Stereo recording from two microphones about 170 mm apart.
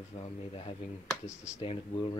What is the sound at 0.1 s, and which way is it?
Speech, 40° left (ahead or behind).